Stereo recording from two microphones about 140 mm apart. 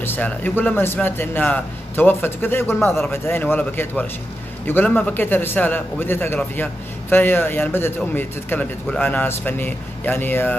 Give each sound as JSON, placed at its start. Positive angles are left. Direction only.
{"t": 0.0, "sound": "a man's voice", "side_deg": 15}